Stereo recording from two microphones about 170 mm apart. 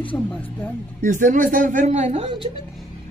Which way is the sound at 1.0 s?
50° right (ahead or behind).